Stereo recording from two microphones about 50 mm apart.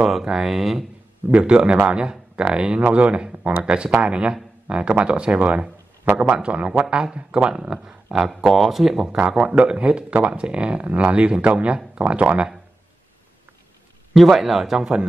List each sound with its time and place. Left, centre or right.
0.0 s speech: centre
1.5 s speech: right
8.1 s speech: centre
9.4 s speech: right
14.1 s speech: centre